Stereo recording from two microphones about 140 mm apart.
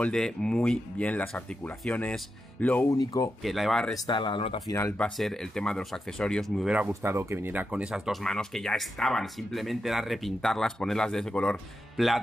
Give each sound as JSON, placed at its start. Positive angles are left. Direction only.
{"t": 0.0, "sound": "speech", "side_deg": 5}
{"t": 2.9, "sound": "speech", "side_deg": 25}
{"t": 3.4, "sound": "speech", "side_deg": 0}
{"t": 4.1, "sound": "speech", "side_deg": 35}
{"t": 4.6, "sound": "speech", "side_deg": 20}
{"t": 6.9, "sound": "speech", "side_deg": -20}